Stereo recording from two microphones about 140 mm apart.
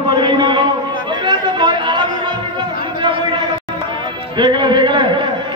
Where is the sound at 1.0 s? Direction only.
35° right (ahead or behind).